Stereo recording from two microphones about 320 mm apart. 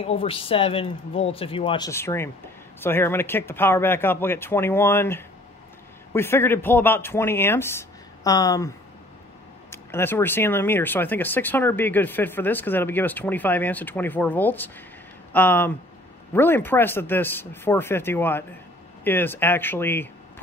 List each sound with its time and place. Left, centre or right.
0.0 s speech: centre